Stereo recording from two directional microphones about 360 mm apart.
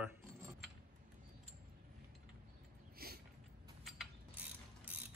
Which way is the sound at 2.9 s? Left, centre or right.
Right.